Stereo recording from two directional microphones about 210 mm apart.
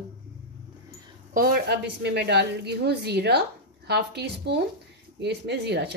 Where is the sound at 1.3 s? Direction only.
45° right (ahead or behind).